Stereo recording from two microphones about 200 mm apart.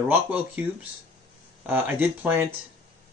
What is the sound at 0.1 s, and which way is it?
Speech, 10° right (ahead or behind).